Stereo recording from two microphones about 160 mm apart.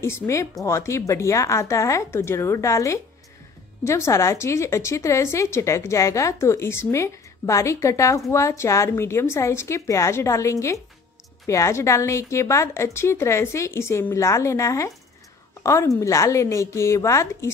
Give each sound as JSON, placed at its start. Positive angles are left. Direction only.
{"t": 0.0, "sound": "a woman's voice", "side_deg": 15}